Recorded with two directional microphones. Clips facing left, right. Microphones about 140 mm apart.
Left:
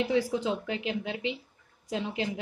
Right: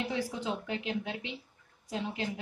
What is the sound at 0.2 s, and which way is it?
Speech, 90° left.